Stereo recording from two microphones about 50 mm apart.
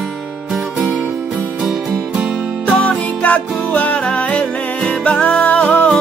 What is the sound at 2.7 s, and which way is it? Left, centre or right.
Music, left.